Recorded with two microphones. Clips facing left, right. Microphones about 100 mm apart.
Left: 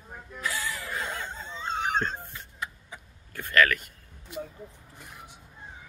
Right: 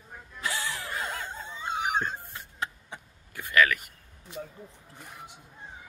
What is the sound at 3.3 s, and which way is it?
Speech, 10° right (ahead or behind).